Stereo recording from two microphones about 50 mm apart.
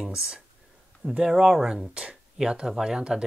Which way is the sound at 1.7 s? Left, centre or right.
Centre.